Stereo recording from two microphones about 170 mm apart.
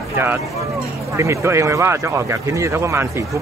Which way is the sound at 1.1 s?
15° right (ahead or behind).